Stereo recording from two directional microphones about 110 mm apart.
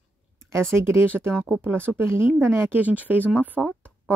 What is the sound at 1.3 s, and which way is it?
Speech, centre (ahead or behind).